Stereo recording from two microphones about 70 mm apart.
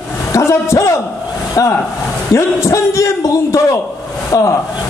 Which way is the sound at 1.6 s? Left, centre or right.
Left.